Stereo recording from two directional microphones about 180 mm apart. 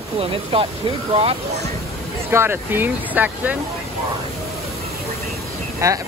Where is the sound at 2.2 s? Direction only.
15° right (ahead or behind).